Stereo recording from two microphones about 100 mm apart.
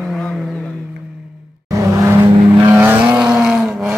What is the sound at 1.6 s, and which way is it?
Vehicle, 30° right (ahead or behind).